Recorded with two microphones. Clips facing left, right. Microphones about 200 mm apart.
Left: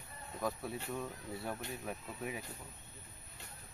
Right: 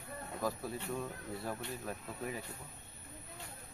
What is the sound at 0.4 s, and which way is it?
Speech, centre (ahead or behind).